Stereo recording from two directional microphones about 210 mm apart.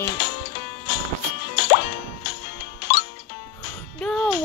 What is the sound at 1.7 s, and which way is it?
Music, 55° left (ahead or behind).